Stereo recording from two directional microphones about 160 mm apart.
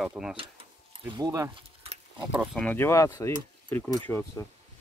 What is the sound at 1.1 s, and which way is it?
Speech, 20° right (ahead or behind).